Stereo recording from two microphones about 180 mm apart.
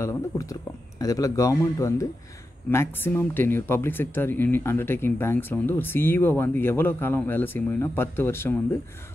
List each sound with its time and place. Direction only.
0.0 s speech: 15° left (ahead or behind)